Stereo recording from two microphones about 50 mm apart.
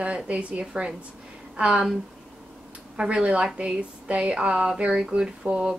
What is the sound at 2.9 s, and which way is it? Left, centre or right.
Speech, centre.